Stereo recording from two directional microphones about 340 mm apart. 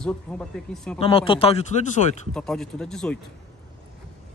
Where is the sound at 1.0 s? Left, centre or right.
Centre.